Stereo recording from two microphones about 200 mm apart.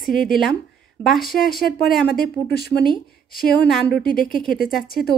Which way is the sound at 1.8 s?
50° left (ahead or behind).